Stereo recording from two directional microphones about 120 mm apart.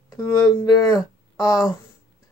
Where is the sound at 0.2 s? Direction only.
30° left (ahead or behind).